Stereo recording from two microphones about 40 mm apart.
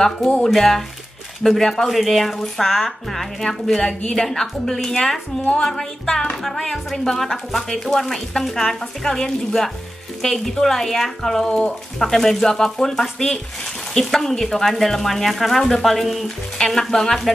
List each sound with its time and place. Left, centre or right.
0.4 s speech: centre
1.9 s speech: centre
3.4 s speech: centre
11.4 s speech: centre
12.0 s speech: centre
16.5 s speech: centre